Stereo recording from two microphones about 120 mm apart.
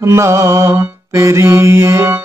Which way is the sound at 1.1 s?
25° right (ahead or behind).